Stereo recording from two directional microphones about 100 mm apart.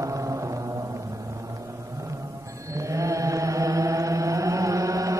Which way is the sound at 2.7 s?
30° right (ahead or behind).